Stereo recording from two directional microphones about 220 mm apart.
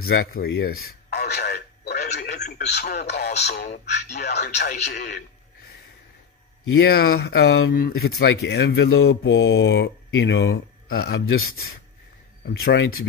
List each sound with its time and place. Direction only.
0.0 s radio: 45° left (ahead or behind)
2.5 s speech: 45° left (ahead or behind)
6.8 s speech: 45° left (ahead or behind)
12.6 s speech: 60° left (ahead or behind)